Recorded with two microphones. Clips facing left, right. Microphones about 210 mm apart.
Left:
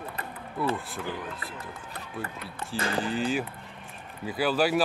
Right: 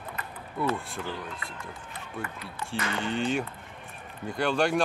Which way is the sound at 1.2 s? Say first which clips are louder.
Left 2 dB; 5° left (ahead or behind).